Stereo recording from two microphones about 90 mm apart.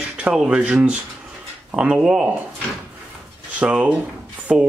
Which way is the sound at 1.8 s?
10° right (ahead or behind).